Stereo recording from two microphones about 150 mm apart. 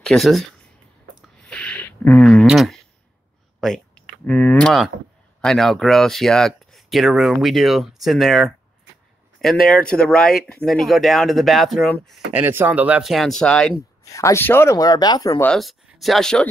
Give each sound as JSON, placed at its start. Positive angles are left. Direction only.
{"t": 0.0, "sound": "speech", "side_deg": 5}
{"t": 1.2, "sound": "a sound", "side_deg": 5}
{"t": 3.6, "sound": "speech", "side_deg": 5}
{"t": 9.8, "sound": "speech", "side_deg": 5}
{"t": 14.0, "sound": "speech", "side_deg": 20}
{"t": 15.4, "sound": "speech", "side_deg": 5}